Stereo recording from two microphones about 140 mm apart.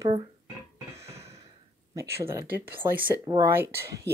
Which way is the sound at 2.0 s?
20° right (ahead or behind).